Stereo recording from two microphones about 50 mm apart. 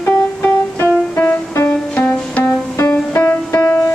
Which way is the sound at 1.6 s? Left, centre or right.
Left.